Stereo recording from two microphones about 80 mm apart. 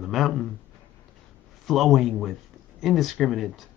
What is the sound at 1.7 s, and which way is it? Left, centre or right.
Speech, centre.